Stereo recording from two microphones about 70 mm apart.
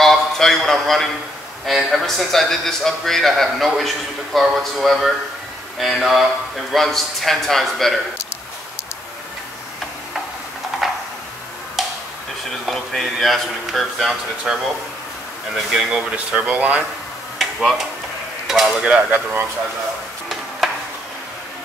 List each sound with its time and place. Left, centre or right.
0.0 s a sound: centre
1.7 s a man's voice: centre
12.6 s a man's voice: centre
16.1 s speech: centre
17.4 s tick-tock: centre
18.5 s speech: centre
20.6 s a sound: centre